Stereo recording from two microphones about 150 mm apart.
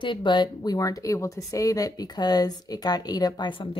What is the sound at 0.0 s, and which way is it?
Speech, 30° left (ahead or behind).